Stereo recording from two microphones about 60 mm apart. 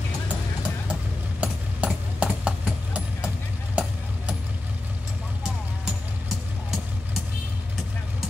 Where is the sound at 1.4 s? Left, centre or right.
Centre.